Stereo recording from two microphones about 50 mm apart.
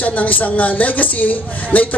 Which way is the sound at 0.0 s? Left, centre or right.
Left.